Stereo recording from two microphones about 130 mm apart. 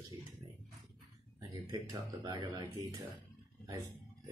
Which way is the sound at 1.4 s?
25° right (ahead or behind).